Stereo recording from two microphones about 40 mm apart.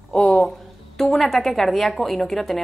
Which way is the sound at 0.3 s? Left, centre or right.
Centre.